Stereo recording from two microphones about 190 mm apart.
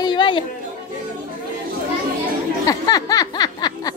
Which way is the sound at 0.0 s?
25° left (ahead or behind).